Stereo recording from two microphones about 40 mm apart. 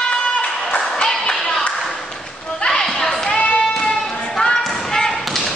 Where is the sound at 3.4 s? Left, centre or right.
Left.